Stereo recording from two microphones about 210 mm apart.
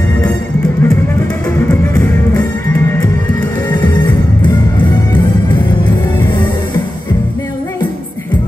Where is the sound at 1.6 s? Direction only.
10° left (ahead or behind).